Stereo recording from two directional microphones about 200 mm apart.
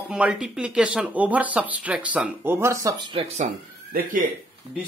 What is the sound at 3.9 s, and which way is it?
Speech, 45° right (ahead or behind).